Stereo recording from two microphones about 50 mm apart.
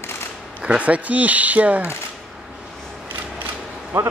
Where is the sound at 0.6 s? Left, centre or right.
Right.